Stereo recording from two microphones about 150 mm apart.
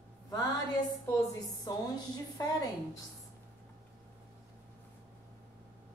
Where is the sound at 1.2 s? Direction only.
25° left (ahead or behind).